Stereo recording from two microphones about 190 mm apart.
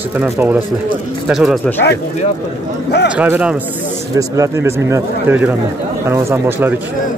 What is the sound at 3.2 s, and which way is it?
Speech, 5° right (ahead or behind).